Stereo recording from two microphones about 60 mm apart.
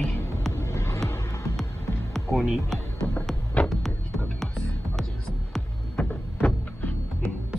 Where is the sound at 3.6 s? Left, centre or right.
Left.